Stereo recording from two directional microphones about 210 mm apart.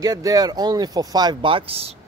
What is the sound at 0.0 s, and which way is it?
Speech, 15° right (ahead or behind).